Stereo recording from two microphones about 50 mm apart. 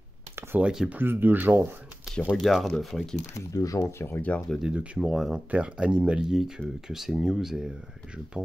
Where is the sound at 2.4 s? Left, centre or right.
Centre.